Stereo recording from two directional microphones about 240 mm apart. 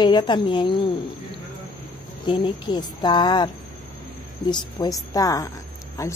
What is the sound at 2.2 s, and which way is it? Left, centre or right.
A woman's voice, centre.